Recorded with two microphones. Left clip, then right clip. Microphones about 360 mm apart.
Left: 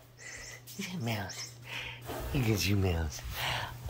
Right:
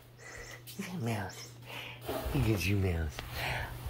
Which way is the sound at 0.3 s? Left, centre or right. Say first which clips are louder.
Left 1 dB; centre.